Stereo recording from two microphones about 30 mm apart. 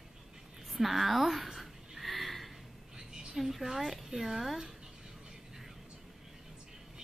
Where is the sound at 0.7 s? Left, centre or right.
Centre.